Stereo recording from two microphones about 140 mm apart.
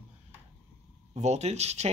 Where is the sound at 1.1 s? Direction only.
50° right (ahead or behind).